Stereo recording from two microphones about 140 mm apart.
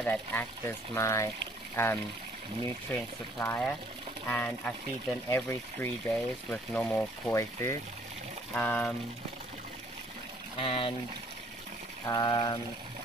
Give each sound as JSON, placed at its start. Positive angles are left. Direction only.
{"t": 0.0, "sound": "speech", "side_deg": 15}
{"t": 3.3, "sound": "speech", "side_deg": 15}
{"t": 7.3, "sound": "speech", "side_deg": 20}
{"t": 10.6, "sound": "speech", "side_deg": 40}
{"t": 12.1, "sound": "speech", "side_deg": 35}